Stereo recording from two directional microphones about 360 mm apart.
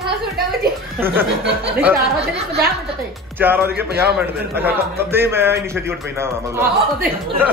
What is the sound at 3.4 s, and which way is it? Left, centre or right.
A man's voice, centre.